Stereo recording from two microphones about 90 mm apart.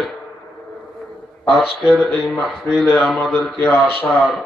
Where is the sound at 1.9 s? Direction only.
5° left (ahead or behind).